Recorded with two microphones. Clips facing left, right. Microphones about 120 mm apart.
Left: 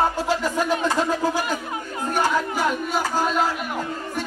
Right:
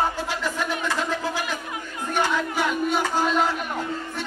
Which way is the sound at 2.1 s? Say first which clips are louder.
Left 2 dB; 40° left (ahead or behind).